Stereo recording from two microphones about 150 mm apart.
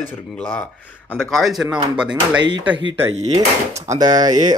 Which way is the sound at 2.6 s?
15° right (ahead or behind).